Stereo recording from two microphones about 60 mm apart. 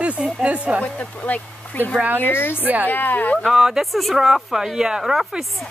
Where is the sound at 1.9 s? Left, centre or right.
Right.